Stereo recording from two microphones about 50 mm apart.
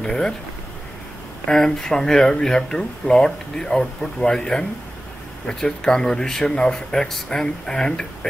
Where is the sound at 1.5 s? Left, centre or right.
Centre.